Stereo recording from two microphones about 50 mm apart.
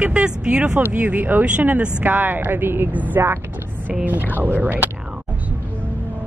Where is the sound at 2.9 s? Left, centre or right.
Right.